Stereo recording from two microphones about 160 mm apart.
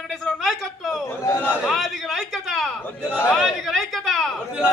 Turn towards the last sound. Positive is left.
turn(degrees=0)  # may be behind; listen again after turning